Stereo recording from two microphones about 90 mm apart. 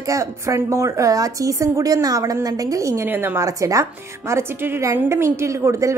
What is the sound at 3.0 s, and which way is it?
Speech, 25° right (ahead or behind).